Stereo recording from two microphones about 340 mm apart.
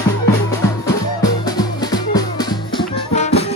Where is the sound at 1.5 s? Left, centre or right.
Centre.